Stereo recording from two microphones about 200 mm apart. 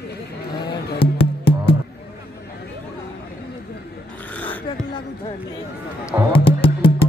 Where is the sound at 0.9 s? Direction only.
25° left (ahead or behind).